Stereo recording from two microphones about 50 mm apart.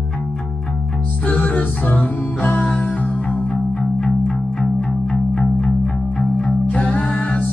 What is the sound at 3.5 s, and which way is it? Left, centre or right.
Music, centre.